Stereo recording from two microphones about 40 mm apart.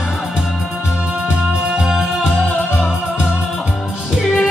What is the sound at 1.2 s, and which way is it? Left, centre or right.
Music, right.